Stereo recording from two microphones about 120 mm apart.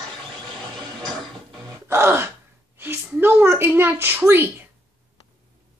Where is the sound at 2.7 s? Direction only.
20° right (ahead or behind).